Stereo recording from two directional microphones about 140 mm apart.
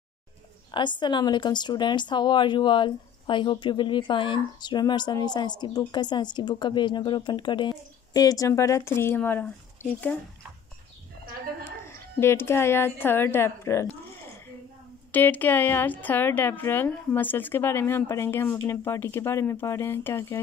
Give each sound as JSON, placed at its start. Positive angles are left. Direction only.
{"t": 0.7, "sound": "speech", "side_deg": 35}
{"t": 11.8, "sound": "a woman's voice", "side_deg": 20}
{"t": 15.0, "sound": "a woman's voice", "side_deg": 10}